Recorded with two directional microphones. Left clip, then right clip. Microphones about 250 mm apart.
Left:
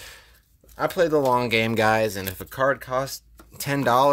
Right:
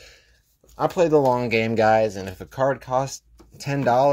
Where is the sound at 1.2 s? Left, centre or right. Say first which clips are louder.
Even; centre.